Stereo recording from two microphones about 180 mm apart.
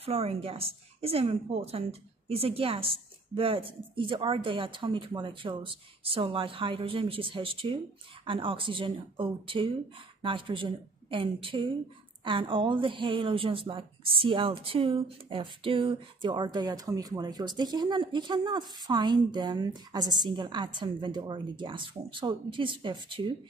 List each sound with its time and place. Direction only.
0.0 s a woman's voice: 35° right (ahead or behind)